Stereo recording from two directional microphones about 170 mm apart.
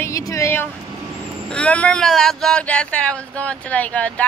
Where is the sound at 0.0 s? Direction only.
20° left (ahead or behind).